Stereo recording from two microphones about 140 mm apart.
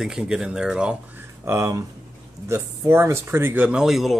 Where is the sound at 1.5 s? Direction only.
20° right (ahead or behind); by 4.2 s centre (ahead or behind).